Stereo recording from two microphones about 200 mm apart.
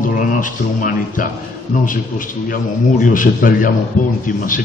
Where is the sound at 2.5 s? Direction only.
45° left (ahead or behind).